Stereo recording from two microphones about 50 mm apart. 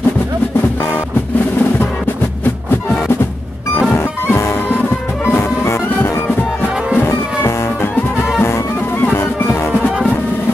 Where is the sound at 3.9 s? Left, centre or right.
Left.